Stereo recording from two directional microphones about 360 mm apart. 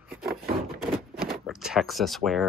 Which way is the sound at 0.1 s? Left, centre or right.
Centre.